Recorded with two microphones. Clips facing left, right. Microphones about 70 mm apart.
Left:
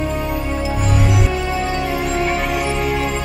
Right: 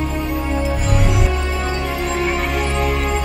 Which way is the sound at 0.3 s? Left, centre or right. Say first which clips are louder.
Right 1 dB; centre.